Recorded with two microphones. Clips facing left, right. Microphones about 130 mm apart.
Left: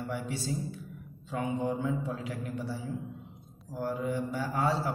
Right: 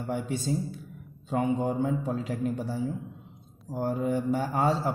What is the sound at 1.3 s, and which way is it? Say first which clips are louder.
A man's voice: right 5 dB; 45° right (ahead or behind).